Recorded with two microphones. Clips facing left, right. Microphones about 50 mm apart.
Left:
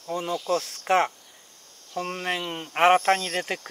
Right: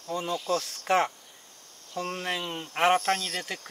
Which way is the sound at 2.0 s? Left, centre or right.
Centre.